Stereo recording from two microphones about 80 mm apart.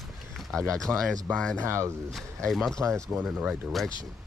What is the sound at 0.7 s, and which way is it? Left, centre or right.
Speech, centre.